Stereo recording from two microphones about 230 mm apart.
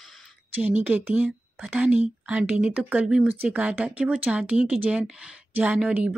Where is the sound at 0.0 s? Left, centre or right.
Centre.